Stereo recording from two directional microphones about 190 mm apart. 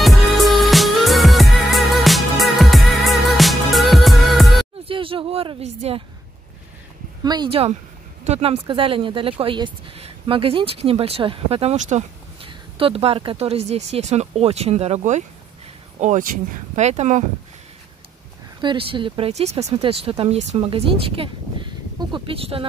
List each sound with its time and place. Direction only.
0.0 s music: centre (ahead or behind)
4.8 s speech: 30° right (ahead or behind)
7.2 s speech: 25° right (ahead or behind)
18.6 s speech: 25° right (ahead or behind)